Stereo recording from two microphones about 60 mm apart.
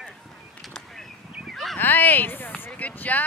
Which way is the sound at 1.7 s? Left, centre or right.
Left.